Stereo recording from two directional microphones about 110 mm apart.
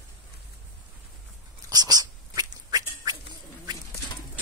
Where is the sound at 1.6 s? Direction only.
35° right (ahead or behind).